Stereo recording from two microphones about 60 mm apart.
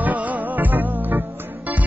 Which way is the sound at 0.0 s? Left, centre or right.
Right.